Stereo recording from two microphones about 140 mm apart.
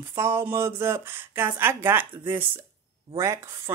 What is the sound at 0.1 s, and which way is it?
Speech, 20° right (ahead or behind).